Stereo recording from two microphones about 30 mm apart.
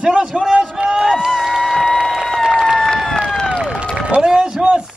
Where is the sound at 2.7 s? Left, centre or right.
Centre.